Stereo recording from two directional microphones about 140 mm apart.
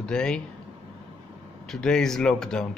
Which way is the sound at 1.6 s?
5° left (ahead or behind).